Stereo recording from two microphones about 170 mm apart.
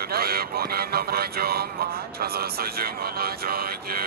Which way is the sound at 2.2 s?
65° right (ahead or behind).